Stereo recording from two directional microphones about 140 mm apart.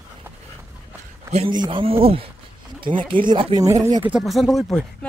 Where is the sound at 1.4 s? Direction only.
35° right (ahead or behind).